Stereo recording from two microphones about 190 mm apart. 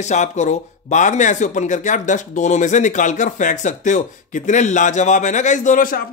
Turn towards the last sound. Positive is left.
turn(degrees=45)  # may be behind; listen again after turning